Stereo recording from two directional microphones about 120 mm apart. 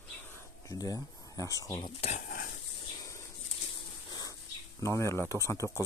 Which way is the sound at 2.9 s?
30° left (ahead or behind).